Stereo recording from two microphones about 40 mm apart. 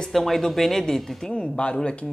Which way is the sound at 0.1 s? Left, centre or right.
Centre.